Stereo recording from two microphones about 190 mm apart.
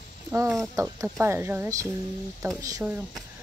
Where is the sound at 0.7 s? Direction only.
15° right (ahead or behind).